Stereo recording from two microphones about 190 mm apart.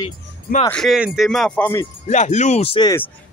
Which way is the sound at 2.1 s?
40° left (ahead or behind).